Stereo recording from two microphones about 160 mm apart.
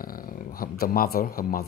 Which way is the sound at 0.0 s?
60° left (ahead or behind).